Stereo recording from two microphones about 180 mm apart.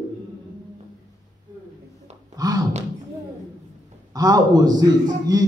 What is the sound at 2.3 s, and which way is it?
Thunk, 20° right (ahead or behind).